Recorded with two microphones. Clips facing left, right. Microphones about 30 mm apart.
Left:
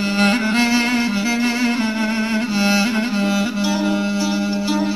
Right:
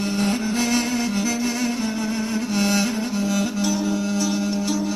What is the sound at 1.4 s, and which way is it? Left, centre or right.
Music, left.